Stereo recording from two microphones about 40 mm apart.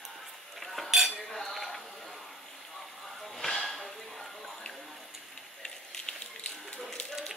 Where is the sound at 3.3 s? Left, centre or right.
Centre.